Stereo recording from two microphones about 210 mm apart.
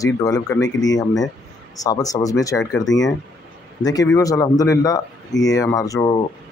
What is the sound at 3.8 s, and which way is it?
Speech, 15° left (ahead or behind).